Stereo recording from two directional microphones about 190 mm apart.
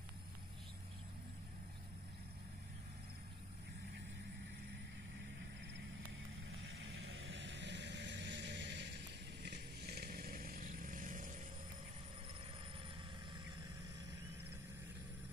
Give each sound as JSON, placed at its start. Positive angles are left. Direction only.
{"t": 6.6, "sound": "vehicle", "side_deg": -80}